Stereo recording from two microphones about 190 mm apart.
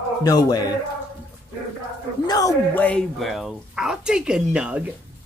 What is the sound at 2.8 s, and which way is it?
Speech, 5° left (ahead or behind).